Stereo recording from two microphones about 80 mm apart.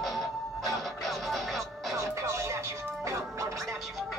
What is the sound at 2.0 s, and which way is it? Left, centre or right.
Music, right.